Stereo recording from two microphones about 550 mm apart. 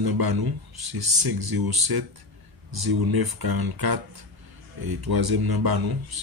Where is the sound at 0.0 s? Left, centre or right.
Right.